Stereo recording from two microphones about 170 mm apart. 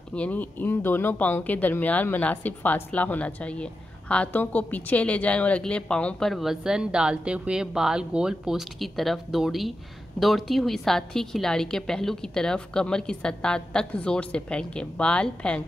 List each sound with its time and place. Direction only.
0.1 s a woman's voice: 10° left (ahead or behind)